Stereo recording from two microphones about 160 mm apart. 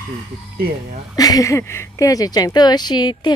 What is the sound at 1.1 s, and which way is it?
Speech, 20° left (ahead or behind).